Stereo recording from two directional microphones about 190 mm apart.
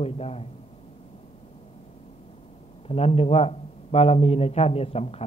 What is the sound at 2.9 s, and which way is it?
A man's voice, 35° left (ahead or behind).